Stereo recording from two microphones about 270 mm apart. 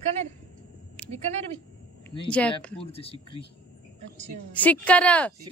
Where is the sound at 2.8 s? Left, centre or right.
Left.